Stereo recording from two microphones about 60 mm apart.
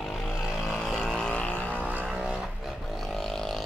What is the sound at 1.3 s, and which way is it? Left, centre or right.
Vehicle, left.